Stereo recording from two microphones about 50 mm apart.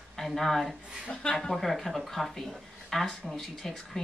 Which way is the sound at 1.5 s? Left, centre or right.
Centre.